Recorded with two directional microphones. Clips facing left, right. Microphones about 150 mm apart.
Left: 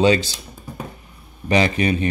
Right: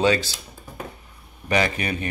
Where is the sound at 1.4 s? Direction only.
25° left (ahead or behind).